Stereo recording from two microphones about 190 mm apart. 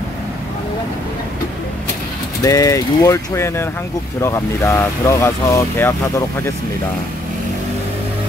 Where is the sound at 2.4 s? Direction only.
15° left (ahead or behind).